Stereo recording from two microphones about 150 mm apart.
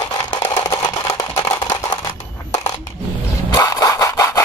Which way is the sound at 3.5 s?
25° left (ahead or behind).